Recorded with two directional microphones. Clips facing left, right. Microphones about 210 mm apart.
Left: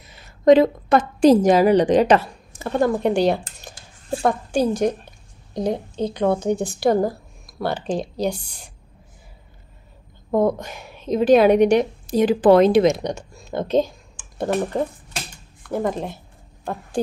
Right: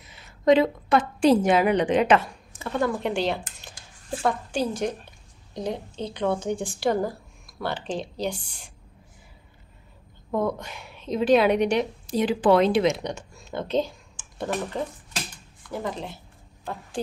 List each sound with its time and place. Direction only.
0.0 s a woman's voice: 40° left (ahead or behind)
10.3 s a woman's voice: 45° left (ahead or behind)